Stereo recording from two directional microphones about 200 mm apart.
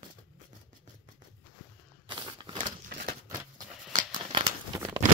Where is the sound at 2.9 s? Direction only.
45° right (ahead or behind).